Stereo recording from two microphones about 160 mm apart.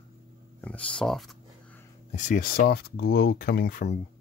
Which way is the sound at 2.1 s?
55° left (ahead or behind).